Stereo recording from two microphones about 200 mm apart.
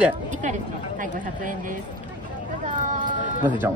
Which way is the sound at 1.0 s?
40° right (ahead or behind).